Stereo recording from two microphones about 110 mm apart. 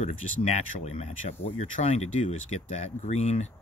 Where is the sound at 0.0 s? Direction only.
90° left.